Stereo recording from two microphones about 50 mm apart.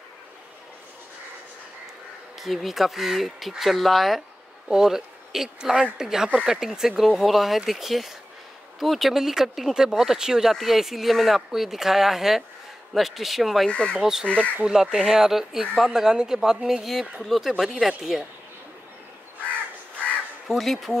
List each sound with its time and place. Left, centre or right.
2.3 s speech: centre
13.7 s speech: left
13.9 s speech: centre
20.4 s speech: centre